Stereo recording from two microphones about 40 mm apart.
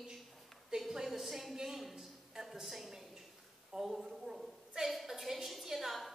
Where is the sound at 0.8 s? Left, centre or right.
Centre.